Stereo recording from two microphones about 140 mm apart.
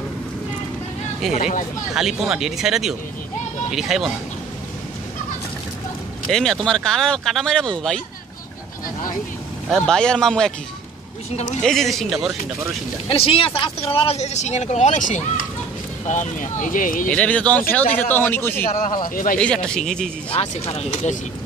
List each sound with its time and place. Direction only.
1.3 s speech: 60° left (ahead or behind)
2.0 s speech: 5° right (ahead or behind)
6.3 s speech: 5° left (ahead or behind)
9.7 s speech: 5° left (ahead or behind)
11.6 s speech: centre (ahead or behind)
13.1 s speech: 40° left (ahead or behind); by 17.1 s 75° left (ahead or behind)
17.1 s speech: 10° left (ahead or behind)
19.0 s a man's voice: 85° left
19.3 s speech: 5° left (ahead or behind)
20.3 s speech: 45° left (ahead or behind)